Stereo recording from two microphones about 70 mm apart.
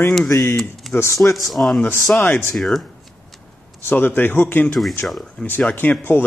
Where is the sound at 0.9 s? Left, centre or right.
Left.